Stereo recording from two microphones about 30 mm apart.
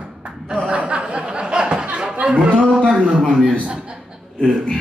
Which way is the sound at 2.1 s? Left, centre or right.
Right.